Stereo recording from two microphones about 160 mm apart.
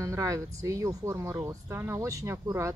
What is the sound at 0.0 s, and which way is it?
Speech, 20° right (ahead or behind).